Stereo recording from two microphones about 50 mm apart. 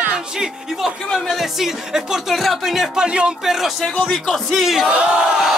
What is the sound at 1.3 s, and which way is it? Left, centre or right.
Music, centre.